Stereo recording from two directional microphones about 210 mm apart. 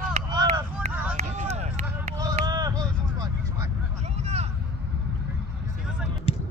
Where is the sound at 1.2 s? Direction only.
35° right (ahead or behind).